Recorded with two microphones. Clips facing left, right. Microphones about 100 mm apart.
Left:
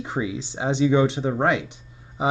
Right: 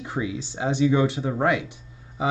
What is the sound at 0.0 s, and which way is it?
Speech, 25° left (ahead or behind).